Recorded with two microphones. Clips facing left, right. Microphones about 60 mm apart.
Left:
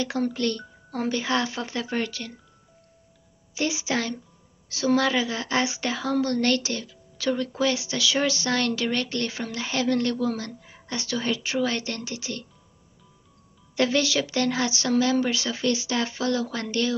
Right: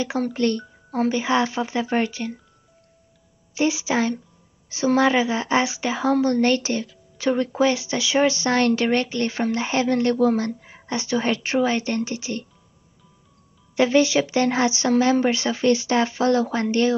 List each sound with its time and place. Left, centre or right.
0.3 s speech: right
3.5 s speech: centre
10.1 s a woman's voice: right
11.6 s speech: right
13.7 s speech: right